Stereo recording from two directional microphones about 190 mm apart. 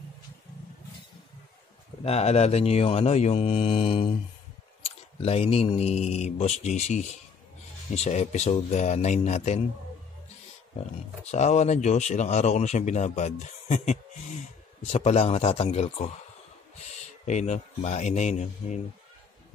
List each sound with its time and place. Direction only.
2.0 s speech: 35° left (ahead or behind)
4.8 s a sound: 35° left (ahead or behind)
5.8 s speech: 35° left (ahead or behind)
11.2 s speech: 35° left (ahead or behind)
17.3 s speech: 35° left (ahead or behind)